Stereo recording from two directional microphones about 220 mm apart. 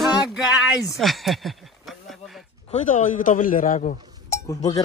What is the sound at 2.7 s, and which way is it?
Speech, 35° left (ahead or behind).